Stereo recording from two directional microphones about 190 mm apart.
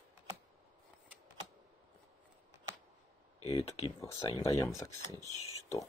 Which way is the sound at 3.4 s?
30° left (ahead or behind).